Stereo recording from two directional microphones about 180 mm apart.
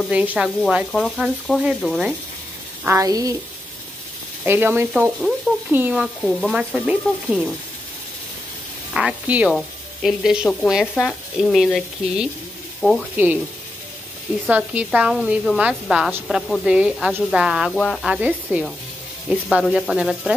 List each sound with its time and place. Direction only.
0.1 s speech: 10° right (ahead or behind)
2.8 s speech: 15° right (ahead or behind)
4.5 s speech: 10° right (ahead or behind)
8.9 s speech: 5° right (ahead or behind)
14.4 s speech: 5° right (ahead or behind)